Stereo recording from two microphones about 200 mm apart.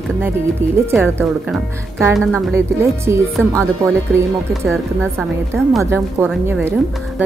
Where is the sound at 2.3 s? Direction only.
15° right (ahead or behind).